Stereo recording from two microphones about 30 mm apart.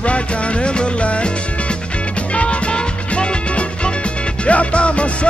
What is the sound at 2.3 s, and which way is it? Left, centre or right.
Music, left.